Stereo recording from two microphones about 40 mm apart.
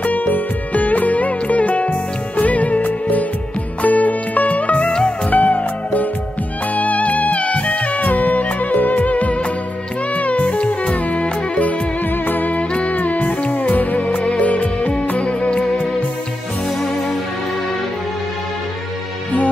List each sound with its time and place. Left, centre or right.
0.0 s music: left
12.3 s music: left
12.5 s music: left